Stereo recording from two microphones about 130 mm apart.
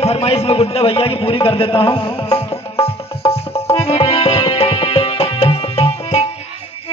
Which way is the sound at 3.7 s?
50° left (ahead or behind).